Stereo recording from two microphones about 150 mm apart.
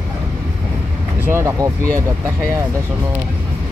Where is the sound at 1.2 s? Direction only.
15° right (ahead or behind).